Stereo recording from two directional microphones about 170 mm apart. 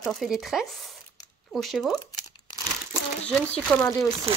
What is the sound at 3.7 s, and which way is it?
Speech, 10° left (ahead or behind).